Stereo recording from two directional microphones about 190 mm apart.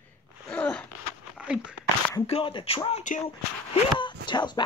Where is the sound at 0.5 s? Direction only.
5° left (ahead or behind).